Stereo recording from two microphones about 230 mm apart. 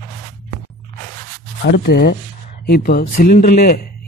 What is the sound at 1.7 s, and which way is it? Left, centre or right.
Speech, left.